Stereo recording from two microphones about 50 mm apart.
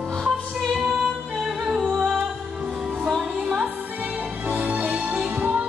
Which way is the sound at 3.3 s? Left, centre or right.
Centre.